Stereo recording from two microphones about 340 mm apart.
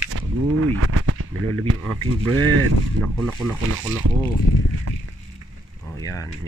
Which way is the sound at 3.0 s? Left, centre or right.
Centre.